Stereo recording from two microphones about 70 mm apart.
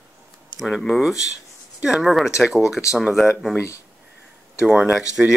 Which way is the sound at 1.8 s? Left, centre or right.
Centre.